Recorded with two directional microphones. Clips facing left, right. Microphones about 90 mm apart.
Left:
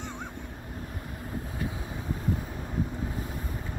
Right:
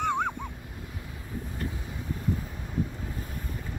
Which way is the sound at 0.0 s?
60° right (ahead or behind).